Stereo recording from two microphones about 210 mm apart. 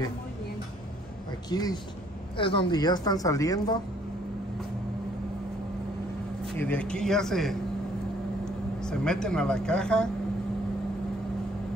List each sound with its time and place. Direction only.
1.5 s a woman's voice: 20° left (ahead or behind)
6.4 s speech: 5° left (ahead or behind)